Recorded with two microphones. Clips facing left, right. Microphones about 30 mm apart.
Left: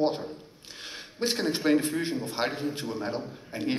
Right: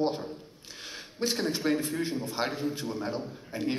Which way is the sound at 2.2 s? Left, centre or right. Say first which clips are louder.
Left 1 dB; left.